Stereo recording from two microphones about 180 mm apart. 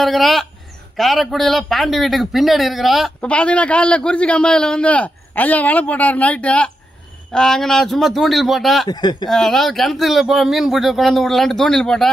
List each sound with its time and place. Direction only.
0.0 s a man's voice: centre (ahead or behind)
8.8 s speech: 25° left (ahead or behind)
9.3 s a man's voice: centre (ahead or behind)